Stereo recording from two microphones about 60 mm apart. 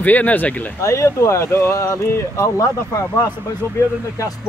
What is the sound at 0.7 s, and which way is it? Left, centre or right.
Speech, left.